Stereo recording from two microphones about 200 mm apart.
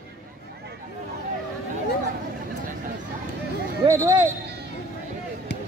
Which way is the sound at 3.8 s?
15° right (ahead or behind).